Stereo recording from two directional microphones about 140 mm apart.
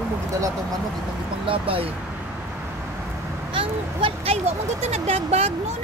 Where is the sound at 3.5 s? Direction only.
40° right (ahead or behind).